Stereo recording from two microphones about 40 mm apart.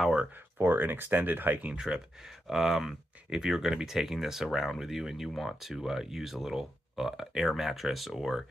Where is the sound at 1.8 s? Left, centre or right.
Centre.